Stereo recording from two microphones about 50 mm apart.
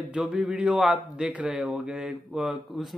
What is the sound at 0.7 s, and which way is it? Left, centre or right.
Mantra, centre.